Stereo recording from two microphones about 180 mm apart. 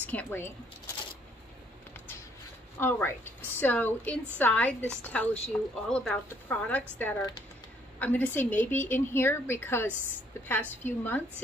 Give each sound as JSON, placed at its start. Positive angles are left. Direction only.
{"t": 0.0, "sound": "speech", "side_deg": 10}
{"t": 2.0, "sound": "a sound", "side_deg": 10}
{"t": 2.8, "sound": "a woman's voice", "side_deg": 10}
{"t": 7.2, "sound": "speech", "side_deg": 20}
{"t": 8.0, "sound": "a woman's voice", "side_deg": 10}